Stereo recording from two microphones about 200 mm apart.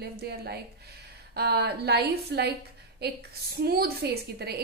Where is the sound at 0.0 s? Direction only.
55° right (ahead or behind).